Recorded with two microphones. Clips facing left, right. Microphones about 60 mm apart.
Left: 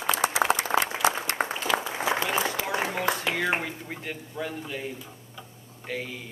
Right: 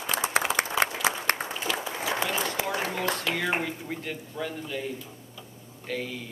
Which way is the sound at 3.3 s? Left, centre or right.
Centre.